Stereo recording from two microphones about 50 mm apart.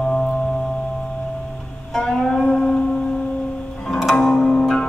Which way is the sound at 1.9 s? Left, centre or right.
Centre.